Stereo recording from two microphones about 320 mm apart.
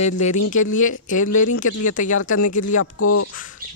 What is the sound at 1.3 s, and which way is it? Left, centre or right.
Speech, left.